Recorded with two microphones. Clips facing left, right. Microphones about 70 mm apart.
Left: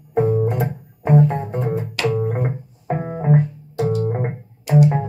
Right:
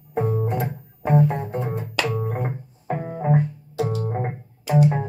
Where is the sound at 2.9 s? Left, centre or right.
Left.